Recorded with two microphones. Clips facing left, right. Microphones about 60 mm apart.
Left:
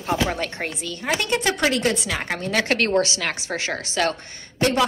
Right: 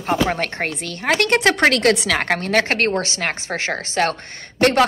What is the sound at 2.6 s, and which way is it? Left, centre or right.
A woman's voice, right.